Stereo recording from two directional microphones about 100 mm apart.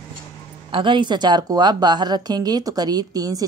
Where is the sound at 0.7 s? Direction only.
55° right (ahead or behind); by 3.5 s 40° right (ahead or behind).